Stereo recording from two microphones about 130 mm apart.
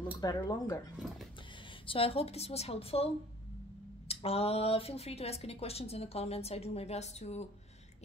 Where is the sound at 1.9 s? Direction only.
45° left (ahead or behind).